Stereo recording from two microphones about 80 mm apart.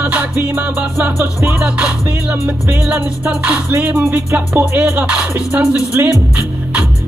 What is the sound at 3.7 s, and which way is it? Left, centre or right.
Music, right.